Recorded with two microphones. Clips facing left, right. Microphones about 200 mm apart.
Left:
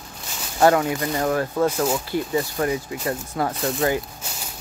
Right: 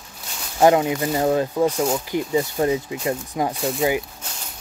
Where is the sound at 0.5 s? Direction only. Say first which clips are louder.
Right 2 dB; 20° right (ahead or behind).